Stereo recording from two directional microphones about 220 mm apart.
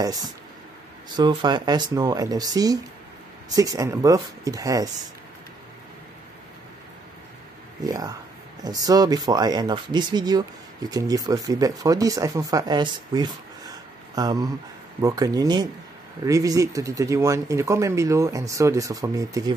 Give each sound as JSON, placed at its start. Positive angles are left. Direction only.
{"t": 0.0, "sound": "speech", "side_deg": -15}
{"t": 7.8, "sound": "speech", "side_deg": -15}